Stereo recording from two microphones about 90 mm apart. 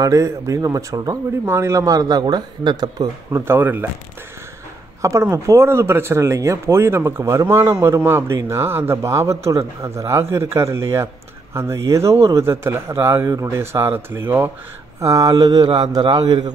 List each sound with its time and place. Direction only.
0.0 s a man's voice: 35° right (ahead or behind)
3.4 s speech: 25° right (ahead or behind)
5.0 s a man's voice: 35° right (ahead or behind)
15.0 s speech: 40° right (ahead or behind); by 16.5 s 55° right (ahead or behind)